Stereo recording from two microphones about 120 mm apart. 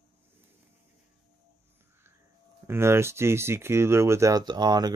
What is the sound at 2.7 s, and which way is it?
Speech, 20° right (ahead or behind).